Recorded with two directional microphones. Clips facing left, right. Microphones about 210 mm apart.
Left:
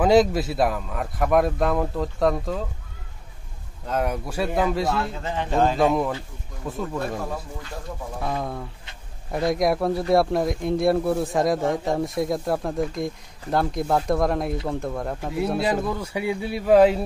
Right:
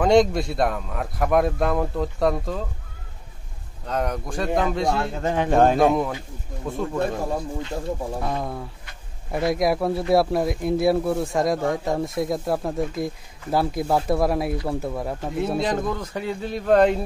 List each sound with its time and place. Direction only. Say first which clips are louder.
0.0 s speech: even; 5° left (ahead or behind)
3.8 s speech: left 1 dB; 5° left (ahead or behind)
4.9 s a man's voice: right 3 dB; 50° right (ahead or behind)
5.8 s speech: right 1 dB; centre (ahead or behind)
8.2 s speech: right 1 dB; centre (ahead or behind)